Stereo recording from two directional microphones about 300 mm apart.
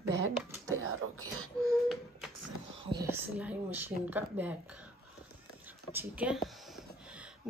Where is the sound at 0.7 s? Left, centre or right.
Right.